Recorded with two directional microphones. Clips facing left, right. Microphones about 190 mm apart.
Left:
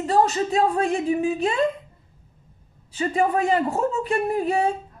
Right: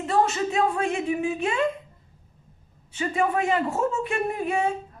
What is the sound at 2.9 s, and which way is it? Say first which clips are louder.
A woman's voice: left 3 dB; 35° left (ahead or behind).